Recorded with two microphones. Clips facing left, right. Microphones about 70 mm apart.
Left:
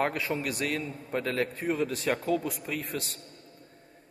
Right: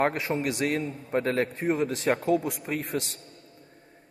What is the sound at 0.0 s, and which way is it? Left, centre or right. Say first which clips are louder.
A man's voice: right 3 dB; right.